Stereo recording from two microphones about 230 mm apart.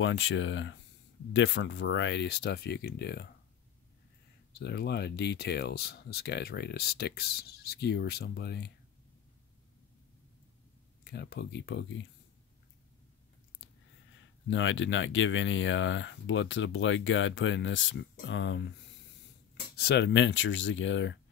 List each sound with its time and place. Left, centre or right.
0.0 s speech: left
4.6 s speech: left
11.1 s speech: left
14.5 s speech: left
19.8 s speech: left